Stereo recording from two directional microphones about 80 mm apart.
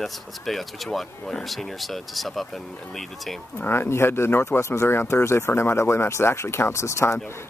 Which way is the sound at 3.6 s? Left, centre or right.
Left.